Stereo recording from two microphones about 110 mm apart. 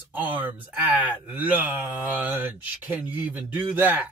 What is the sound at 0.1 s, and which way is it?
Speech, 15° right (ahead or behind).